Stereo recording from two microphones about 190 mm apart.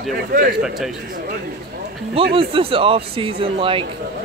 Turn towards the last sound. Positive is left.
turn(degrees=-30)  # may be behind; listen again after turning